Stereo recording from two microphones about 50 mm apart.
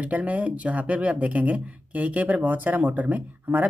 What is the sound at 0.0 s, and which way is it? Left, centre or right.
Speech, right.